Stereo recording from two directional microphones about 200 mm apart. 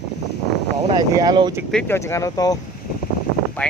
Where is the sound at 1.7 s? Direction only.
10° left (ahead or behind).